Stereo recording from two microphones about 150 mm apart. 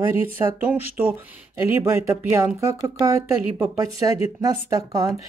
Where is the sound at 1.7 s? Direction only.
15° right (ahead or behind).